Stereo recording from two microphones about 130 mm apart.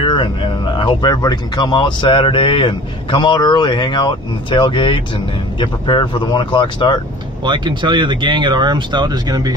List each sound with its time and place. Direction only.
0.0 s speech: 40° left (ahead or behind)
7.4 s speech: 35° right (ahead or behind)